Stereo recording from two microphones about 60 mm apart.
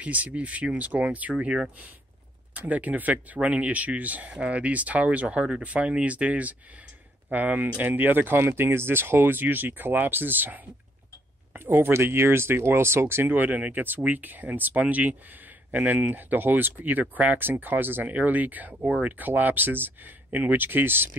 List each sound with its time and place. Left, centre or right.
0.0 s speech: right
2.5 s speech: right